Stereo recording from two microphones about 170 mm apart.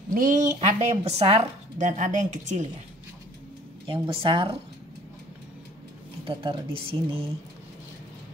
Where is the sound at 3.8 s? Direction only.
30° right (ahead or behind).